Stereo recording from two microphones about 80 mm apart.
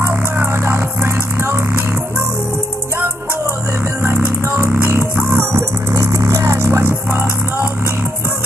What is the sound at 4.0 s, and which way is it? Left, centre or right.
Music, right.